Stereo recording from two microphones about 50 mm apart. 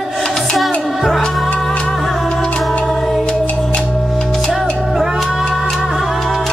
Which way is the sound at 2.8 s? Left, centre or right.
Centre.